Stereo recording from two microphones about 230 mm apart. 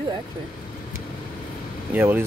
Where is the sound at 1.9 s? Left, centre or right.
Centre.